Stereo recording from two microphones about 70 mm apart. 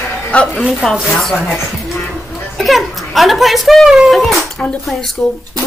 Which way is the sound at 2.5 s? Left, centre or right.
Centre.